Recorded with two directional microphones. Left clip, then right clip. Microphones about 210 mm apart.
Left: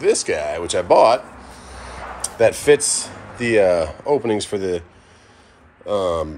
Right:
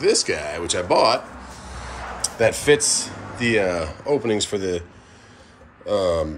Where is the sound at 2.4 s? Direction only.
5° right (ahead or behind).